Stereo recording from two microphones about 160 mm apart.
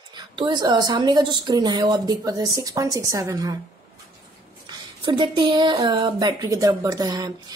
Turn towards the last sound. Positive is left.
turn(degrees=-25)  # may be behind; listen again after turning